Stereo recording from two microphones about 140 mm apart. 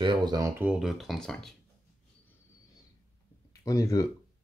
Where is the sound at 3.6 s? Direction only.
25° left (ahead or behind).